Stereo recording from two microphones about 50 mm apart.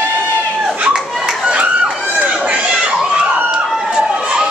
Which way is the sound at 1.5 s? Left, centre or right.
Right.